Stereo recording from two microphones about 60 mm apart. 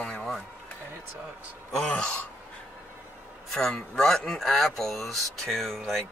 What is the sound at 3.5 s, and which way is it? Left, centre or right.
Speech, centre.